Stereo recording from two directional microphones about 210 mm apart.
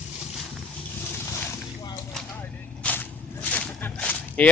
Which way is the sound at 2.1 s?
5° left (ahead or behind).